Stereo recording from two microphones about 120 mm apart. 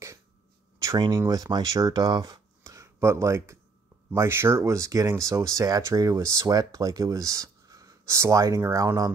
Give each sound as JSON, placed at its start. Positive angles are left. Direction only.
{"t": 0.9, "sound": "speech", "side_deg": -35}